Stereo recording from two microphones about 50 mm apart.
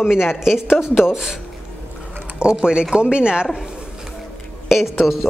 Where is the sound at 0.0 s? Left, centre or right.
Centre.